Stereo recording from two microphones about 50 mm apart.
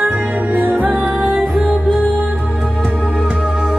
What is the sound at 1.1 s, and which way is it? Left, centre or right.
Music, centre.